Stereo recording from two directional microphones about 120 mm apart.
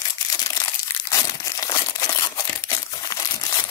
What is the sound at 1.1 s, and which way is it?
Crumpling, 30° left (ahead or behind).